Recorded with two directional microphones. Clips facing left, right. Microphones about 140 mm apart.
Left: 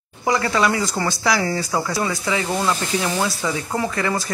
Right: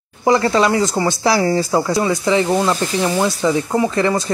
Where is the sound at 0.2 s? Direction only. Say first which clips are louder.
Right 5 dB; 25° right (ahead or behind).